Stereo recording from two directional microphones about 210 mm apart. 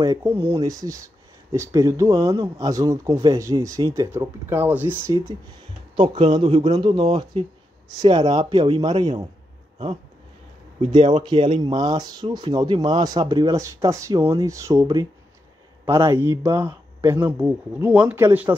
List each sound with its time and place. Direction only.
0.0 s speech: 15° right (ahead or behind)
5.9 s speech: 25° right (ahead or behind)
10.8 s speech: 25° right (ahead or behind); by 18.6 s 10° right (ahead or behind)